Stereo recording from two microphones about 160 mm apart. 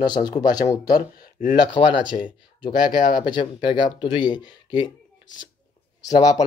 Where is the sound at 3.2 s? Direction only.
30° left (ahead or behind).